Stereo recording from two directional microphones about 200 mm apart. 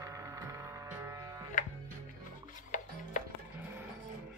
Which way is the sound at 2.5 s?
40° left (ahead or behind).